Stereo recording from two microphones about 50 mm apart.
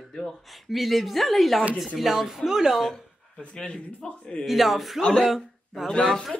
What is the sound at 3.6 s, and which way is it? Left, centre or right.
Speech, centre.